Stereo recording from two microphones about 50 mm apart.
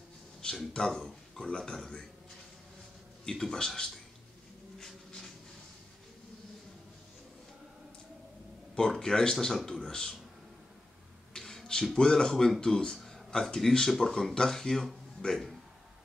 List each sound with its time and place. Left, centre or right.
0.4 s speech: centre
3.3 s speech: centre
4.7 s a sound: centre
8.7 s speech: centre
11.3 s a sound: centre
11.9 s speech: centre